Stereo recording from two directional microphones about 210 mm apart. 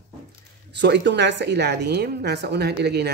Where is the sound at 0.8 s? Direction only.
55° right (ahead or behind).